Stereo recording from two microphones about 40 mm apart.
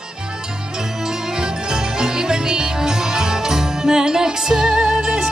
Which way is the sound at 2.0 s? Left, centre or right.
Centre.